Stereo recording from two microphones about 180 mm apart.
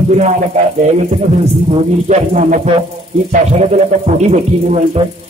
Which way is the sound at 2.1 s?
40° right (ahead or behind).